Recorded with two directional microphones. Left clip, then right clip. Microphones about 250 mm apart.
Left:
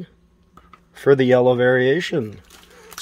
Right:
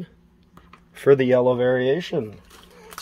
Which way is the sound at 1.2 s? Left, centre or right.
Left.